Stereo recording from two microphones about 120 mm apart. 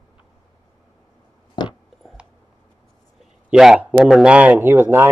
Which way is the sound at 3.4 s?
5° right (ahead or behind).